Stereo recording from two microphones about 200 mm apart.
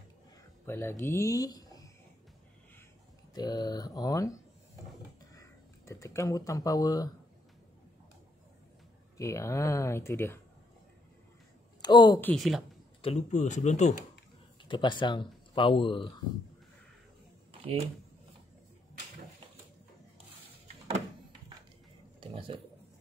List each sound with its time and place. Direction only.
0.7 s speech: 10° left (ahead or behind)
3.3 s speech: 20° left (ahead or behind)
9.2 s speech: 15° left (ahead or behind)
11.8 s speech: 20° left (ahead or behind)
12.2 s speech: 5° left (ahead or behind)
13.0 s speech: 35° left (ahead or behind)
14.6 s speech: 25° left (ahead or behind)
17.5 s shuffling cards: 30° right (ahead or behind)
22.2 s a sound: 25° right (ahead or behind)